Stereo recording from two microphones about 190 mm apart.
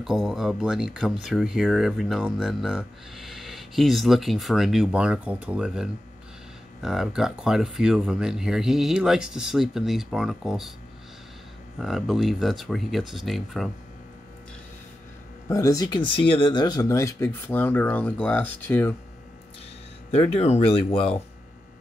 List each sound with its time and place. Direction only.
0.0 s speech: centre (ahead or behind)
11.8 s speech: centre (ahead or behind)
15.4 s speech: 15° left (ahead or behind)
20.1 s speech: 35° left (ahead or behind)